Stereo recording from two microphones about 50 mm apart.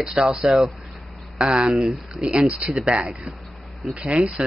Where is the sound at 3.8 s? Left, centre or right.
Centre.